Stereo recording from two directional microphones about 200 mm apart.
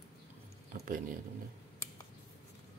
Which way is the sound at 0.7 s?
45° right (ahead or behind).